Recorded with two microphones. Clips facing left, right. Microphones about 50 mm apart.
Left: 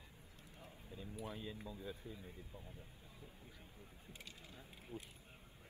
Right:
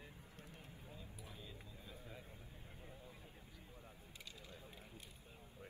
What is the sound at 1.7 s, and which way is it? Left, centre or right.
Speech, left.